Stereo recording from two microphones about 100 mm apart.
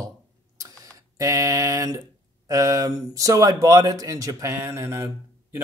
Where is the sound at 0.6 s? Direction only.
35° right (ahead or behind).